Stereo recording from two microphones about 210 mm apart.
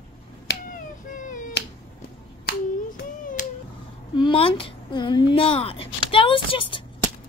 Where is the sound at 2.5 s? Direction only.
45° left (ahead or behind).